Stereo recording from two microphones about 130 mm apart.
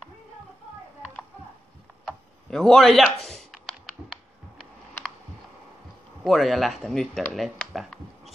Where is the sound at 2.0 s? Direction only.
5° left (ahead or behind).